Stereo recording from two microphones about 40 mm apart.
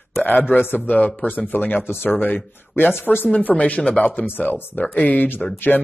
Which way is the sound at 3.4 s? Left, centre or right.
Left.